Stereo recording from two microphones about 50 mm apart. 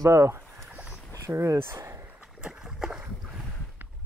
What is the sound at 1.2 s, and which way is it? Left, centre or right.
Speech, right.